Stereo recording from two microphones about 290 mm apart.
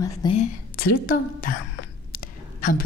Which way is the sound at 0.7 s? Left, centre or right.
Left.